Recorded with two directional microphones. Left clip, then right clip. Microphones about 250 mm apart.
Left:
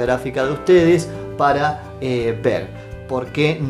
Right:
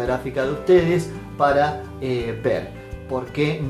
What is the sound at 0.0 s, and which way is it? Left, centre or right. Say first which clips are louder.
Speech: left 4 dB; left.